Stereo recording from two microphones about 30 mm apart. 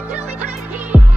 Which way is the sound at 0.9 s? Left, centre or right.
Right.